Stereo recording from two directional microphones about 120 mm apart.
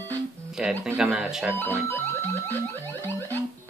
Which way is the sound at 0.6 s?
10° right (ahead or behind).